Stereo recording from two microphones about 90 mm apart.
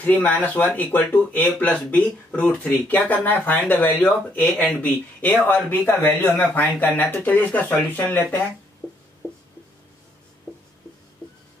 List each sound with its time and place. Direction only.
0.0 s speech: 20° left (ahead or behind)